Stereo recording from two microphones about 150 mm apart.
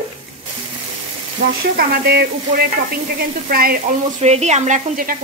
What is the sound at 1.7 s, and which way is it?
Speech, 85° right.